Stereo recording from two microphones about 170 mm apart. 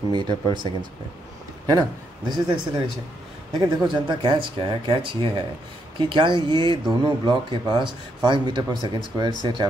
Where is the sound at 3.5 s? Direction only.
30° right (ahead or behind).